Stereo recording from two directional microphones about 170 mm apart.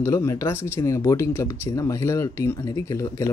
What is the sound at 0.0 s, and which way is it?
Speech, 15° left (ahead or behind).